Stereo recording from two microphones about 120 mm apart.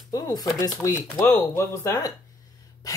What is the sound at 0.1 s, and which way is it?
Speech, 35° left (ahead or behind).